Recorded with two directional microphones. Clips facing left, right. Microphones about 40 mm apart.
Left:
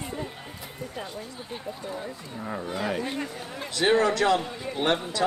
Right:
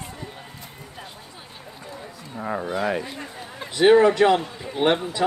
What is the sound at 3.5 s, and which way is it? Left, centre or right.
A man's voice, centre.